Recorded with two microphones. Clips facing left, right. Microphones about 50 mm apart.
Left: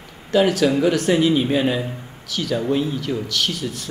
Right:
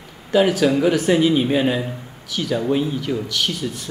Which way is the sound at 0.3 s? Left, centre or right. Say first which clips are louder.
Right 1 dB; centre.